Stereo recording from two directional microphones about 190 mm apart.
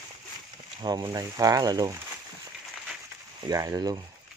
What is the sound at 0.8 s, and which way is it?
Speech, 20° right (ahead or behind).